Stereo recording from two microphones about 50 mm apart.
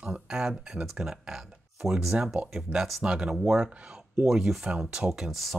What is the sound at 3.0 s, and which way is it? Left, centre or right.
Speech, centre.